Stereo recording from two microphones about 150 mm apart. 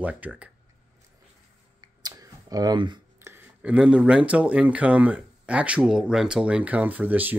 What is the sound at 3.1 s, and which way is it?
Speech, 15° right (ahead or behind).